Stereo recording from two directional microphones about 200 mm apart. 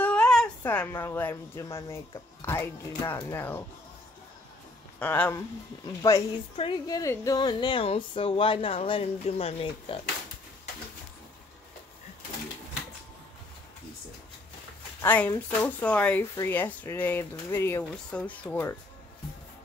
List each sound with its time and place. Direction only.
0.0 s speech: 5° left (ahead or behind)
4.9 s speech: 10° left (ahead or behind)
6.5 s speech: 25° left (ahead or behind)
15.0 s speech: 10° left (ahead or behind)